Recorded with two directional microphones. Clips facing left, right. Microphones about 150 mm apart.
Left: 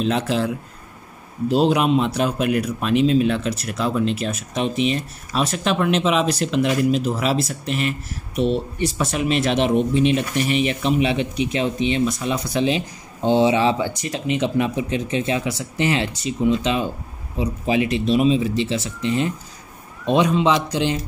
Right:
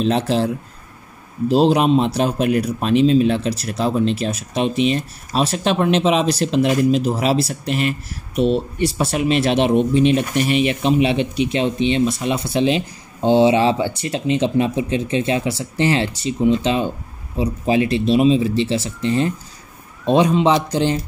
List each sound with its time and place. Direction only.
0.0 s a man's voice: 35° right (ahead or behind)
1.5 s a man's voice: 35° right (ahead or behind)